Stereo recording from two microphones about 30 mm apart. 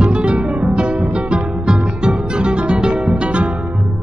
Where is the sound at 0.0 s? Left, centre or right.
Right.